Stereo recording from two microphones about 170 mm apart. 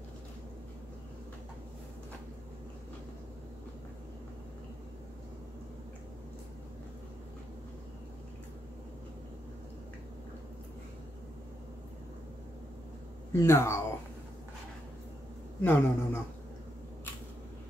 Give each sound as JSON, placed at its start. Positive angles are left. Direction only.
{"t": 13.3, "sound": "speech", "side_deg": 15}
{"t": 15.6, "sound": "speech", "side_deg": 15}